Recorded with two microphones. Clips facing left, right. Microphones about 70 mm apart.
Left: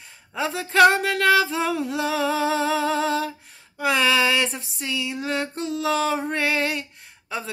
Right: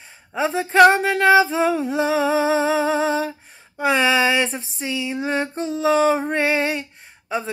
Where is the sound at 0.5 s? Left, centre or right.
Centre.